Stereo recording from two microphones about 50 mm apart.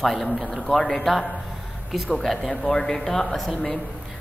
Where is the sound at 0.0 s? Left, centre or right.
Centre.